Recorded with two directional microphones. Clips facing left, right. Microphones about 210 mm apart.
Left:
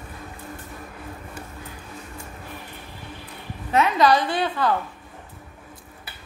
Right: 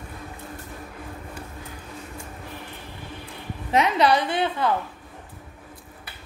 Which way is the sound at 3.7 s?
20° right (ahead or behind).